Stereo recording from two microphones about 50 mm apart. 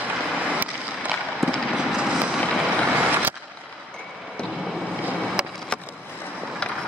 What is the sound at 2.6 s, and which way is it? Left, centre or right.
Vehicle, right.